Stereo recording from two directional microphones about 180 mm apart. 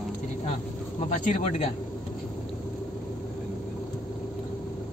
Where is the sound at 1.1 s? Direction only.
40° left (ahead or behind).